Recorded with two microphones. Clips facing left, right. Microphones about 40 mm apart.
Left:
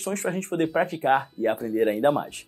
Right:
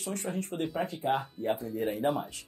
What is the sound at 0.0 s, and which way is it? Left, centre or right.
Speech, left.